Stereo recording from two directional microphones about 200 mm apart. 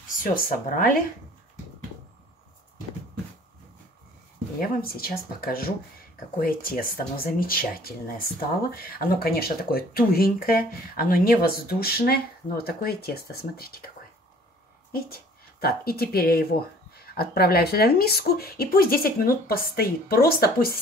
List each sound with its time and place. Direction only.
0.2 s speech: 45° left (ahead or behind)
4.6 s speech: 45° left (ahead or behind)
15.6 s speech: 50° left (ahead or behind)